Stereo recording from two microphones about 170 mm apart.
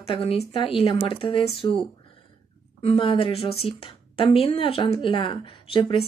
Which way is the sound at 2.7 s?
35° left (ahead or behind).